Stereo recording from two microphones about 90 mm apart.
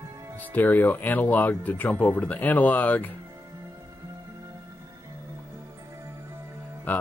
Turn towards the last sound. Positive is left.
turn(degrees=15)  # may be behind; listen again after turning